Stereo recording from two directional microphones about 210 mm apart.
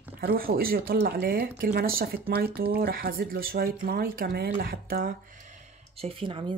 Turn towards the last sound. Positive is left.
turn(degrees=-25)  # may be behind; listen again after turning